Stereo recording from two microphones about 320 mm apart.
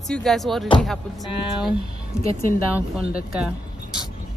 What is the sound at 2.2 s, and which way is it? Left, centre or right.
Speech, centre.